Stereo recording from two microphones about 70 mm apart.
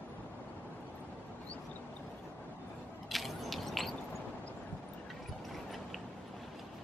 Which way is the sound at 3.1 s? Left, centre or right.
Centre.